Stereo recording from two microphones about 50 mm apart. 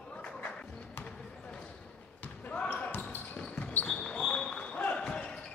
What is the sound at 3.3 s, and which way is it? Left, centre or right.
Basketball bounce, centre.